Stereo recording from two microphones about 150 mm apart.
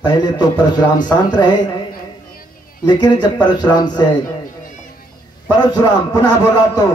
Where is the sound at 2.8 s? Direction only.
30° left (ahead or behind).